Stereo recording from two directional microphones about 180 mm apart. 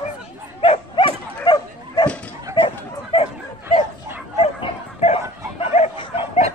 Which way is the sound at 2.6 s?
30° left (ahead or behind).